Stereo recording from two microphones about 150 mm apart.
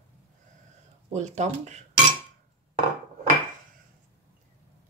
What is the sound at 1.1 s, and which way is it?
Speech, 50° right (ahead or behind).